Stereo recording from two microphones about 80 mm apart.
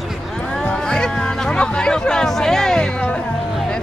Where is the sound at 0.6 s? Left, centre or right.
Centre.